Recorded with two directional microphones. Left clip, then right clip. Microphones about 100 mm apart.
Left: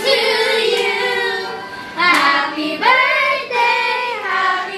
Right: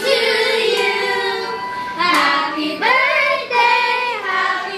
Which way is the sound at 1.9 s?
20° left (ahead or behind).